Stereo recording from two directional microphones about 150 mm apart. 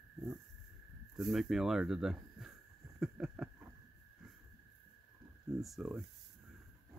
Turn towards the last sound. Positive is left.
turn(degrees=0)  # may be behind; listen again after turning